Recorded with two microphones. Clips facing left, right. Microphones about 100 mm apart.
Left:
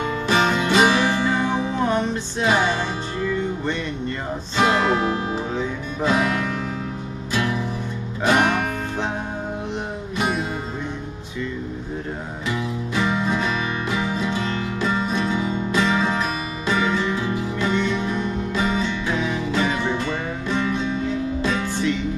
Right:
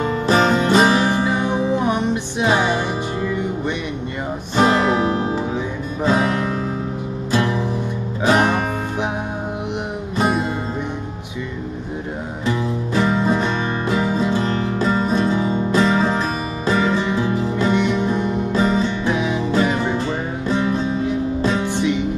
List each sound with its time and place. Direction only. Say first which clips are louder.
0.0 s music: right 4 dB; 40° right (ahead or behind)
1.1 s music: right 2 dB; 15° right (ahead or behind)
4.6 s music: right 3 dB; 35° right (ahead or behind)
8.3 s music: right 2 dB; 35° right (ahead or behind)
12.4 s music: right 5 dB; 35° right (ahead or behind)
17.7 s music: right 4 dB; 20° right (ahead or behind)
18.5 s music: right 5 dB; 35° right (ahead or behind)
19.1 s music: right 3 dB; 20° right (ahead or behind)
19.5 s music: right 4 dB; 35° right (ahead or behind)
21.7 s music: right 3 dB; 20° right (ahead or behind)